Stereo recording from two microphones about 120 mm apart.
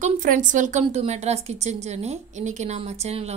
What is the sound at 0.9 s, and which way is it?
Speech, 65° right (ahead or behind).